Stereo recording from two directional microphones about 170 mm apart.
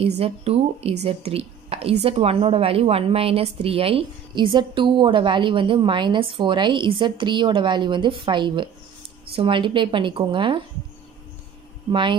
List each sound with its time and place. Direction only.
0.0 s speech: 35° right (ahead or behind)
11.9 s speech: 30° right (ahead or behind)